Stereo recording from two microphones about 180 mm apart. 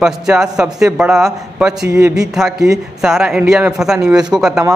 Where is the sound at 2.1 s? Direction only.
Centre (ahead or behind).